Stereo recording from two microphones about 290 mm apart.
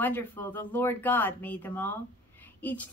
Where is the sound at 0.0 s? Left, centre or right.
Centre.